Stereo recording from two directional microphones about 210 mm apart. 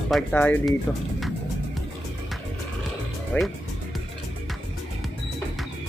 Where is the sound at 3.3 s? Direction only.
10° left (ahead or behind).